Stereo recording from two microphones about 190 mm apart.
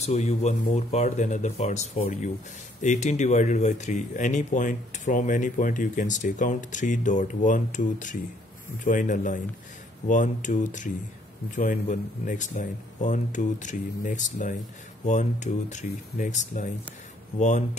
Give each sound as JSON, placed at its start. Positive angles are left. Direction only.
{"t": 0.0, "sound": "speech", "side_deg": 35}